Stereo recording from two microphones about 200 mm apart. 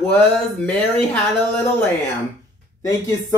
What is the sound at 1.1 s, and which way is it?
Speech, 5° left (ahead or behind).